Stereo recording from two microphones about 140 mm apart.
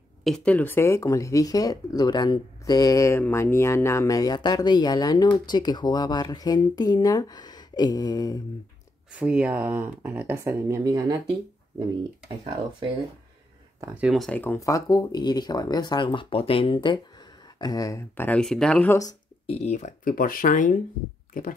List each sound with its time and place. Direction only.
0.2 s speech: 5° left (ahead or behind); by 8.4 s 25° left (ahead or behind)
9.1 s speech: 10° right (ahead or behind); by 11.1 s 25° right (ahead or behind)
13.9 s speech: 5° right (ahead or behind)
14.3 s speech: 15° left (ahead or behind)
19.4 s speech: 45° left (ahead or behind); by 20.8 s 65° left (ahead or behind)
21.3 s speech: 85° left